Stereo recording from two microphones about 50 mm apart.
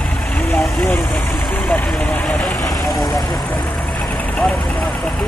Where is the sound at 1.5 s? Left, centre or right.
Left.